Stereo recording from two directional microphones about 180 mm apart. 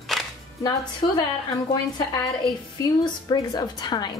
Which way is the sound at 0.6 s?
20° left (ahead or behind).